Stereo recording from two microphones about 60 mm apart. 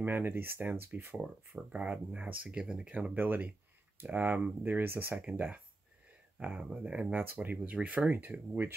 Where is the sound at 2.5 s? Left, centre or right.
Centre.